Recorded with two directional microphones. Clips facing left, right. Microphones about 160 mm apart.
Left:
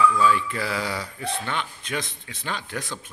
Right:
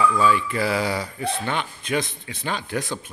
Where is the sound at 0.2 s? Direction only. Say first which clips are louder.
Right 2 dB; 10° right (ahead or behind).